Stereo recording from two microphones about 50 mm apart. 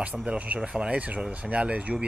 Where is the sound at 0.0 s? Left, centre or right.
Right.